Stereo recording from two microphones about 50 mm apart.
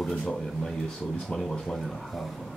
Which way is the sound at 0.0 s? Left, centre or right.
Centre.